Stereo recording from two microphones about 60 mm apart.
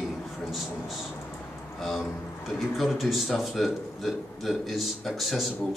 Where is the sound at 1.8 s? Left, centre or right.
Centre.